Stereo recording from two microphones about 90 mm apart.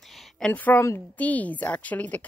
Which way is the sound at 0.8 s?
30° left (ahead or behind).